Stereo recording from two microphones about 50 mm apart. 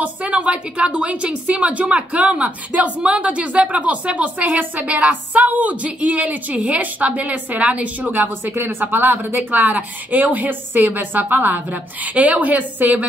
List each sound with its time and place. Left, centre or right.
0.0 s a woman's voice: right
8.1 s speech: right